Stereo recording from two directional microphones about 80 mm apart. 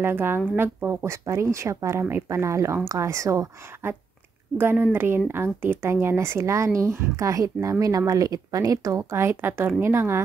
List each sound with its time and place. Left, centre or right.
0.0 s a woman's voice: right
4.6 s a woman's voice: right
9.1 s speech: right